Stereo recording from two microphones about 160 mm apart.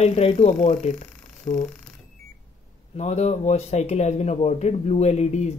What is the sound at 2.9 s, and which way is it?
Speech, 45° left (ahead or behind).